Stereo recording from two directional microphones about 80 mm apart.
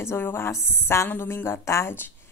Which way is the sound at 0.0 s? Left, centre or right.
Left.